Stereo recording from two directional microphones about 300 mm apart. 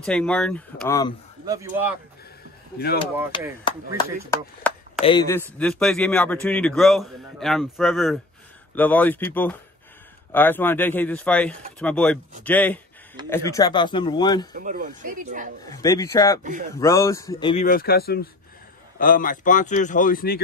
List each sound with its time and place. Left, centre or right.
0.0 s a man's voice: centre
1.4 s a man's voice: centre
3.3 s speech: centre
4.3 s chop: centre
5.0 s speech: centre
5.6 s a man's voice: centre
14.5 s speech: right
15.7 s speech: centre
17.6 s a man's voice: left